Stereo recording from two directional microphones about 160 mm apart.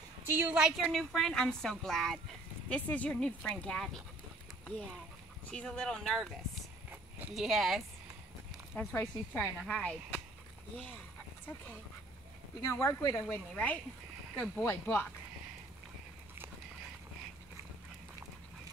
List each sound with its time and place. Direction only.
0.3 s a woman's voice: 10° right (ahead or behind)
5.5 s speech: 5° left (ahead or behind)
12.6 s speech: 20° left (ahead or behind)